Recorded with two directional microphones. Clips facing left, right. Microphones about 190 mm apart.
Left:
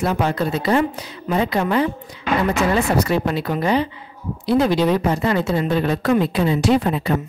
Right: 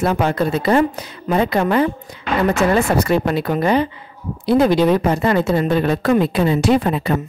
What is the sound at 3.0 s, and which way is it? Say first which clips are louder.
Speech: right 3 dB; 55° right (ahead or behind).